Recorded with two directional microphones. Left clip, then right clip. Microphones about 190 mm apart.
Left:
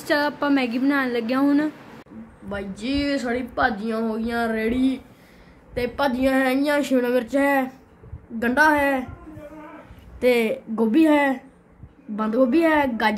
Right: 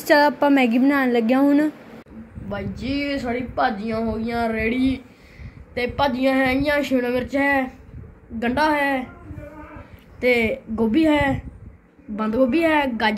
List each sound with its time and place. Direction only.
0.0 s a woman's voice: 20° right (ahead or behind)
2.5 s speech: 35° left (ahead or behind)
10.2 s speech: 40° left (ahead or behind)